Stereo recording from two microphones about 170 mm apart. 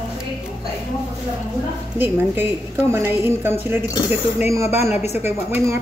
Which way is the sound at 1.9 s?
10° right (ahead or behind).